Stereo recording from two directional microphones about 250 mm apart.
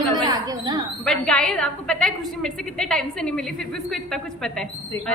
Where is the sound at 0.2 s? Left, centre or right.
Centre.